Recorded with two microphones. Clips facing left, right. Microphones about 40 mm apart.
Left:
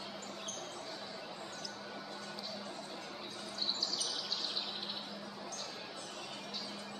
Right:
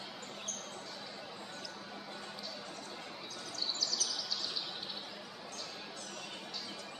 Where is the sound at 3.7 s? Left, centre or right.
Left.